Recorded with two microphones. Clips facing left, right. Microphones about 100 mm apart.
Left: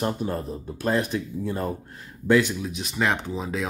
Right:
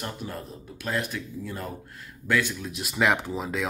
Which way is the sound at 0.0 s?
35° left (ahead or behind).